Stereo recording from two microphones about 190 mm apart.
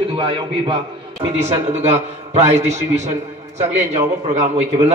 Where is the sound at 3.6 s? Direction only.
15° right (ahead or behind).